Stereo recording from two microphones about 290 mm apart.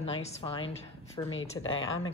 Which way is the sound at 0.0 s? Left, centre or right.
Centre.